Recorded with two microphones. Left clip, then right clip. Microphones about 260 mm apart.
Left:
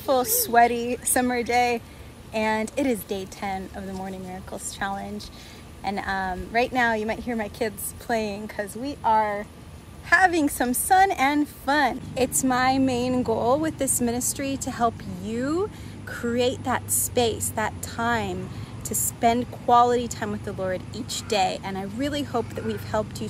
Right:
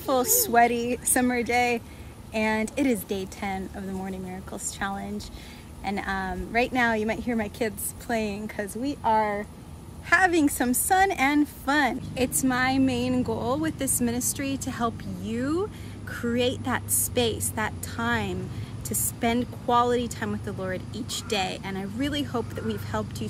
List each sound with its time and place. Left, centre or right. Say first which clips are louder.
0.0 s a woman's voice: left 1 dB; centre